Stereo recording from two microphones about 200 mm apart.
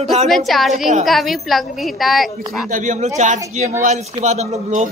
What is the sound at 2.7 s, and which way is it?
A man's voice, 40° right (ahead or behind).